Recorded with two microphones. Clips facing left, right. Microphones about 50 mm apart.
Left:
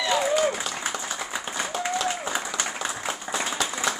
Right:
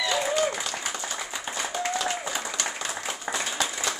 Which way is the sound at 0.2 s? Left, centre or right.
Centre.